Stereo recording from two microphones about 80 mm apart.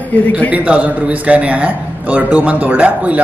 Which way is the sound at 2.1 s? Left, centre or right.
Centre.